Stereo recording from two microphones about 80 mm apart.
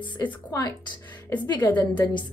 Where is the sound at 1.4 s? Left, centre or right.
Left.